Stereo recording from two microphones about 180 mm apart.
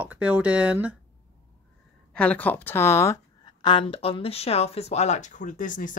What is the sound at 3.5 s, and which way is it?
Speech, 25° left (ahead or behind).